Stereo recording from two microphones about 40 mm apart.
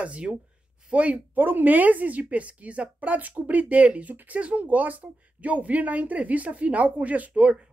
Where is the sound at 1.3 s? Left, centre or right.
Right.